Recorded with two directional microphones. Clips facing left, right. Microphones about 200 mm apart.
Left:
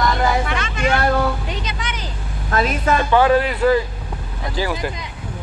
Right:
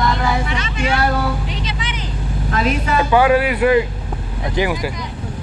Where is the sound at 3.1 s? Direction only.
10° right (ahead or behind).